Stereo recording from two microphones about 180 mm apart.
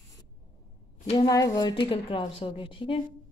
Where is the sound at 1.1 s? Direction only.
20° left (ahead or behind).